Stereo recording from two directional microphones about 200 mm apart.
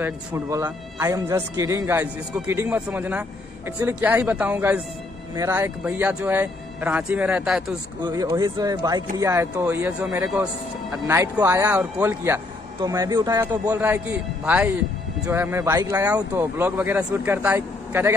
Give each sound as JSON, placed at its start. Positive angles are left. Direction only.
{"t": 0.0, "sound": "speech", "side_deg": -15}
{"t": 8.0, "sound": "speech", "side_deg": -20}
{"t": 11.1, "sound": "a man's voice", "side_deg": -15}